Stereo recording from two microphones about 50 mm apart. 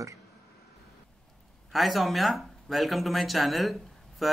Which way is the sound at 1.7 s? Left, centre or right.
Centre.